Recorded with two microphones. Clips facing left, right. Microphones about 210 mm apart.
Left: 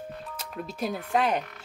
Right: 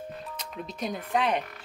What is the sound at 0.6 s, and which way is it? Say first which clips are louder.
Speech: left 2 dB; 5° left (ahead or behind).